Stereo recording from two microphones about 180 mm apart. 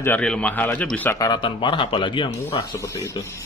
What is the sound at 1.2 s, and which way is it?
Speech, 25° left (ahead or behind).